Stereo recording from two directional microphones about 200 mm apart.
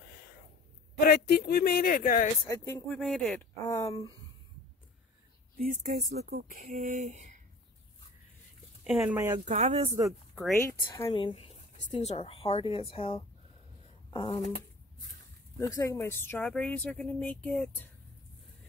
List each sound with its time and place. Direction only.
0.9 s speech: 50° left (ahead or behind)
2.4 s speech: 15° left (ahead or behind)
3.6 s speech: 15° left (ahead or behind)
5.6 s speech: 40° right (ahead or behind)
8.8 s speech: 5° right (ahead or behind)
9.4 s speech: 35° right (ahead or behind)
9.8 s speech: 15° right (ahead or behind)
11.1 s a woman's voice: 25° left (ahead or behind)
15.6 s speech: 15° left (ahead or behind)